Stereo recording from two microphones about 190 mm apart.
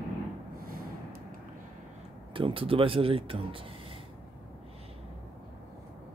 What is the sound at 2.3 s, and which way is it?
Speech, 30° right (ahead or behind).